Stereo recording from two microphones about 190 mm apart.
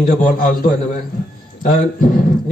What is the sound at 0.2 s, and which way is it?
A man's voice, 45° left (ahead or behind).